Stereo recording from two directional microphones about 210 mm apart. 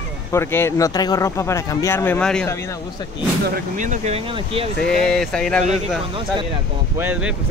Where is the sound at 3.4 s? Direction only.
40° right (ahead or behind); by 4.7 s 25° right (ahead or behind).